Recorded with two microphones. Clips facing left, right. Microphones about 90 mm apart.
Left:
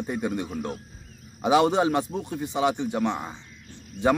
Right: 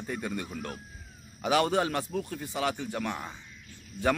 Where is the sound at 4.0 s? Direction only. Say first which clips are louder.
Left 5 dB; 65° left (ahead or behind).